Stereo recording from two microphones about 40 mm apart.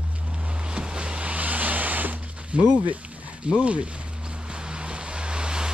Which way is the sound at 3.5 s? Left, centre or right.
Right.